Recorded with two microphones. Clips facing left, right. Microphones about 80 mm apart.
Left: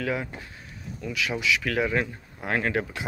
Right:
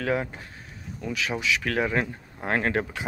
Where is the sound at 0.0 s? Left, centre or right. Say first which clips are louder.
Right 2 dB; right.